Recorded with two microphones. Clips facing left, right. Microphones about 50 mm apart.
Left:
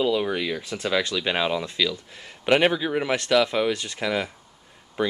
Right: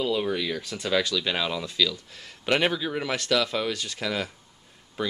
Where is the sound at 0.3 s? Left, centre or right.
Left.